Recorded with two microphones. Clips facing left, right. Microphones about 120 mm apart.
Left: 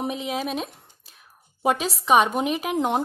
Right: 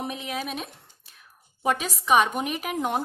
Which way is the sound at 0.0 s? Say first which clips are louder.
Left 4 dB; 35° left (ahead or behind).